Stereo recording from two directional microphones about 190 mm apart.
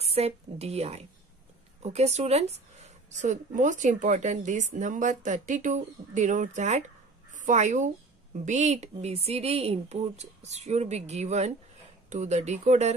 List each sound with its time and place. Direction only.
0.0 s a woman's voice: 35° right (ahead or behind)